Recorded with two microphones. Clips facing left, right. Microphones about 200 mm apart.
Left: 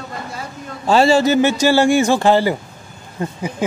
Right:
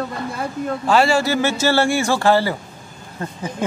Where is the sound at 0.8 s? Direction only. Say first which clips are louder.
Left 4 dB; 25° left (ahead or behind).